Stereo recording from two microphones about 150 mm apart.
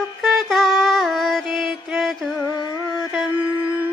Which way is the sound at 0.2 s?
Centre (ahead or behind).